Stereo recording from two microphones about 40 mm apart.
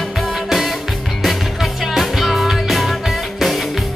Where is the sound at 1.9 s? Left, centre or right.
Centre.